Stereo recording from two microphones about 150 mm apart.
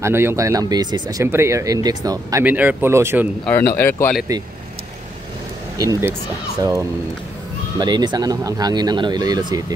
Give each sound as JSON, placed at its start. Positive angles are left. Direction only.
{"t": 0.0, "sound": "speech", "side_deg": -15}
{"t": 2.4, "sound": "speech", "side_deg": -10}
{"t": 3.4, "sound": "speech", "side_deg": 15}
{"t": 5.8, "sound": "speech", "side_deg": -20}